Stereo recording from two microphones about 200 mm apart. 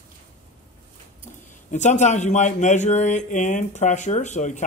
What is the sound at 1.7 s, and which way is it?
Speech, 35° left (ahead or behind).